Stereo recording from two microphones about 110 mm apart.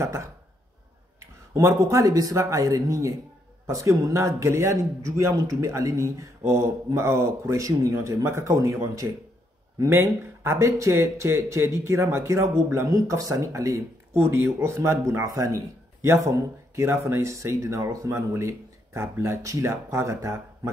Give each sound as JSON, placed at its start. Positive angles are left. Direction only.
{"t": 0.0, "sound": "speech", "side_deg": -25}
{"t": 1.5, "sound": "speech", "side_deg": -25}